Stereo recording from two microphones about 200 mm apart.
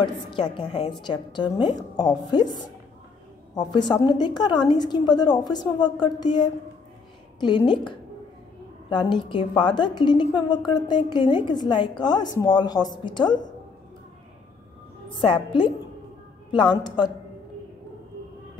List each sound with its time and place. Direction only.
0.0 s a woman's voice: 25° left (ahead or behind)
15.0 s a woman's voice: 25° left (ahead or behind)